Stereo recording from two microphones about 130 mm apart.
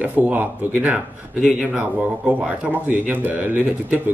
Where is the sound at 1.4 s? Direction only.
5° right (ahead or behind).